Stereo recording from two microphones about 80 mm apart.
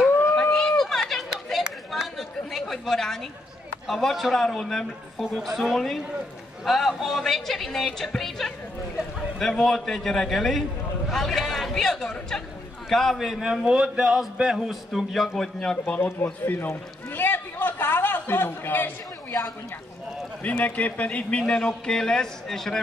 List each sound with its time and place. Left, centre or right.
0.3 s run: centre
1.0 s chatter: centre
3.8 s speech: centre
11.1 s a sound: centre
12.9 s speech: centre
15.9 s a man's voice: left
16.4 s a sound: left
20.4 s a man's voice: centre